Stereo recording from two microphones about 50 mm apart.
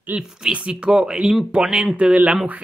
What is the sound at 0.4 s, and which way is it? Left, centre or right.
Speech, centre.